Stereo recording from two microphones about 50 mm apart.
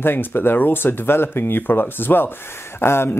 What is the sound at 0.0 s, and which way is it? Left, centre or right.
Speech, left.